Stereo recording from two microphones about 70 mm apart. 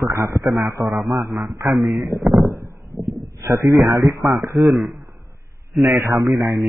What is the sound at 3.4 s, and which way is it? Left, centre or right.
Speech, right.